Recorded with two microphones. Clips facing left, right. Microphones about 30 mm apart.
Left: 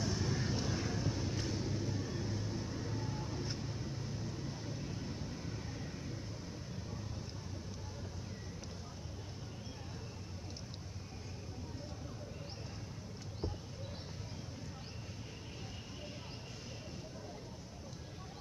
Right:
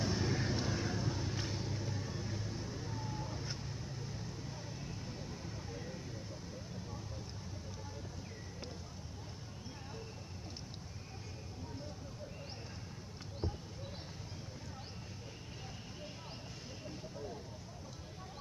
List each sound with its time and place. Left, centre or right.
0.0 s vehicle: centre